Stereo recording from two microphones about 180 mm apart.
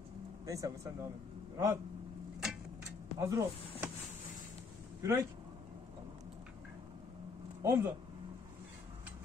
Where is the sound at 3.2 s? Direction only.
15° right (ahead or behind).